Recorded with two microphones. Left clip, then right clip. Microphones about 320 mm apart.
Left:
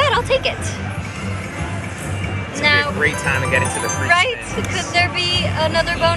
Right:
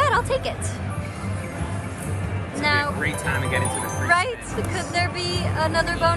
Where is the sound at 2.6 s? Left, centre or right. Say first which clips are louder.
Left 6 dB; centre.